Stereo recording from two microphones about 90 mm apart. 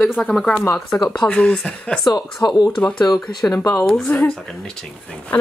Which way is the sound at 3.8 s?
5° left (ahead or behind).